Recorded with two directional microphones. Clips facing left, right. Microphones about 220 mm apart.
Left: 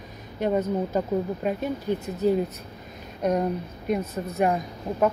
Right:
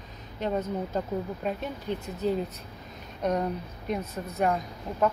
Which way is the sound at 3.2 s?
10° left (ahead or behind).